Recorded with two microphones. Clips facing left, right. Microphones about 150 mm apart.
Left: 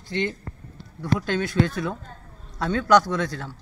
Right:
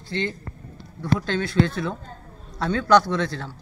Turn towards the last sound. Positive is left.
turn(degrees=15)  # may be behind; listen again after turning